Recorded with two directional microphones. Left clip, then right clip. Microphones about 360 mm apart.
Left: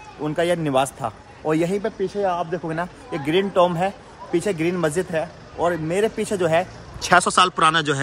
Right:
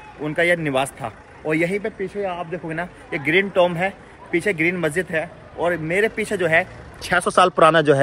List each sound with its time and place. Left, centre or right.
0.2 s a man's voice: centre
7.0 s speech: centre
7.2 s speech: centre